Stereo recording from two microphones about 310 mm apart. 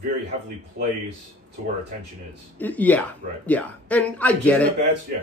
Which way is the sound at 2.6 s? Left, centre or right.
Centre.